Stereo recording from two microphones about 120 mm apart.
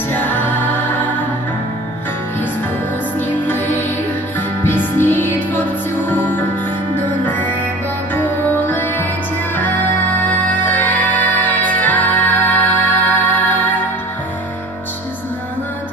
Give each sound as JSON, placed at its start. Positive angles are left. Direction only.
{"t": 0.1, "sound": "music", "side_deg": 15}
{"t": 3.2, "sound": "music", "side_deg": 15}